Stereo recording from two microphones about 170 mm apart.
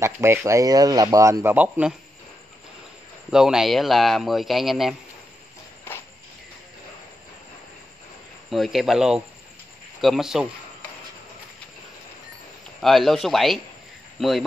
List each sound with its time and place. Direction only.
0.0 s speech: 15° right (ahead or behind)
3.3 s speech: 5° right (ahead or behind)
8.5 s speech: centre (ahead or behind)
12.8 s speech: centre (ahead or behind)